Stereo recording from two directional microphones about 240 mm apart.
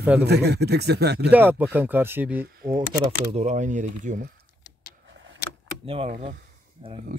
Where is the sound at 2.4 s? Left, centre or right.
Right.